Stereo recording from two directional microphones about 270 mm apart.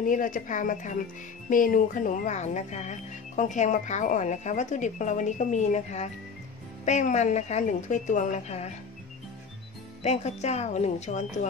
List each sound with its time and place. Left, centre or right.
0.0 s speech: left
10.0 s speech: left